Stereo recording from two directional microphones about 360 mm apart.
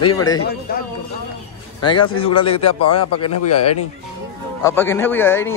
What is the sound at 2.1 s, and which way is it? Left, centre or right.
Speech, centre.